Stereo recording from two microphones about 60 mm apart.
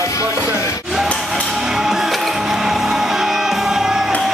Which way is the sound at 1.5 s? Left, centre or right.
Centre.